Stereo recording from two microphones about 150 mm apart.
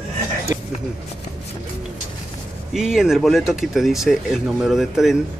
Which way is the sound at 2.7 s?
5° right (ahead or behind).